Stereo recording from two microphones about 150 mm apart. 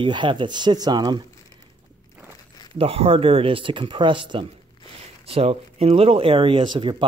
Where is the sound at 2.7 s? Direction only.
40° right (ahead or behind).